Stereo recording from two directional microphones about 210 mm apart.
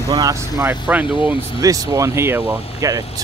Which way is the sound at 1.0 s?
25° left (ahead or behind).